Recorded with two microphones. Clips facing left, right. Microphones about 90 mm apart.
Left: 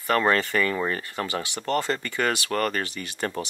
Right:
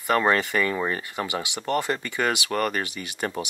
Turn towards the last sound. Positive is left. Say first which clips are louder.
# even
turn(degrees=-15)  # may be behind; listen again after turning